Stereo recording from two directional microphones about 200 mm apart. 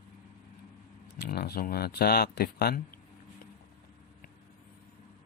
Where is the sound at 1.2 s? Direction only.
50° left (ahead or behind).